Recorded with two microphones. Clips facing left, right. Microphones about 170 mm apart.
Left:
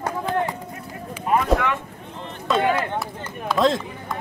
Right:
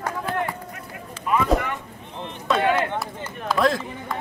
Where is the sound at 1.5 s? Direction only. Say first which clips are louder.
Left 2 dB; 80° left.